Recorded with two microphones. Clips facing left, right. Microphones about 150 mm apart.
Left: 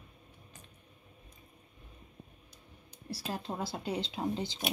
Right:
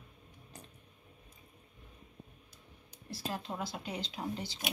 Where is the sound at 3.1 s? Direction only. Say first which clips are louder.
Left 1 dB; 35° left (ahead or behind).